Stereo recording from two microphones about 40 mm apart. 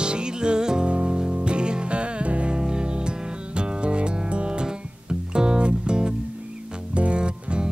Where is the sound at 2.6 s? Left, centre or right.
Centre.